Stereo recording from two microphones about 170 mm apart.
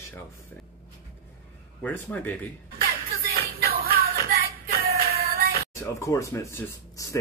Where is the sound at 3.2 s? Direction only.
65° right (ahead or behind).